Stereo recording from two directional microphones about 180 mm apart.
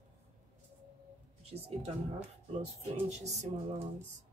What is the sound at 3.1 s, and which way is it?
Speech, 40° right (ahead or behind).